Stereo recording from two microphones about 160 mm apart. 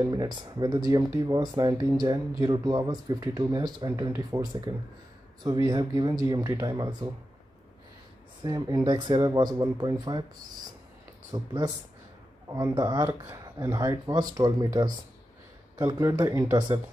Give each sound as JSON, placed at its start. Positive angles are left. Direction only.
{"t": 0.0, "sound": "speech", "side_deg": -25}
{"t": 8.4, "sound": "speech", "side_deg": -25}
{"t": 11.3, "sound": "speech", "side_deg": -25}